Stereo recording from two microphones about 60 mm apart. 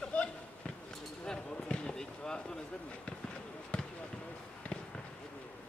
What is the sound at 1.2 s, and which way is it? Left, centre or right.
Basketball bounce, centre.